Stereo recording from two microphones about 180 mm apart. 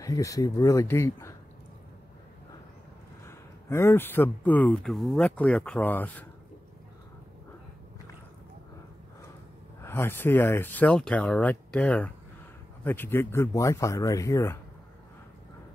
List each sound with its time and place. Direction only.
0.0 s speech: 20° left (ahead or behind)
3.3 s speech: 15° left (ahead or behind)
9.8 s speech: 15° left (ahead or behind)